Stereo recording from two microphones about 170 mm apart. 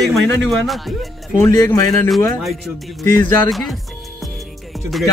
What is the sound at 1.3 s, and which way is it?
Speech, 15° left (ahead or behind).